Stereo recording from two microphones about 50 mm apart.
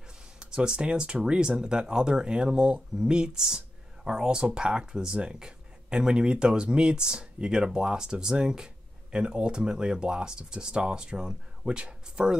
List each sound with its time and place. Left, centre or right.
0.4 s speech: centre